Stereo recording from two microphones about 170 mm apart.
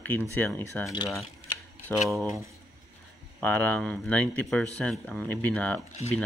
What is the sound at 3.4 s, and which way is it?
Speech, 10° left (ahead or behind).